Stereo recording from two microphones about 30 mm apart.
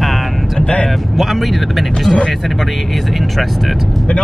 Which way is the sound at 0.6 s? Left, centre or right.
Left.